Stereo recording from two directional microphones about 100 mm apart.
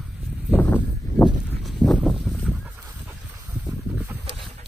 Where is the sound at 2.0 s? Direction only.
Centre (ahead or behind).